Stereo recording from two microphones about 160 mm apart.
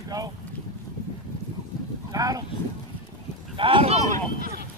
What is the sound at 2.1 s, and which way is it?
Speech, 20° right (ahead or behind).